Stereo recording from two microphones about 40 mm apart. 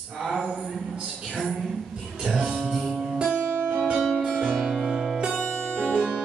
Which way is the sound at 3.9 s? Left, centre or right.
Centre.